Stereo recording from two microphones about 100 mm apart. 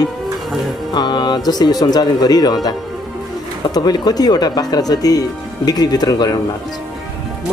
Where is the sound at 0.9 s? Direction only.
45° left (ahead or behind).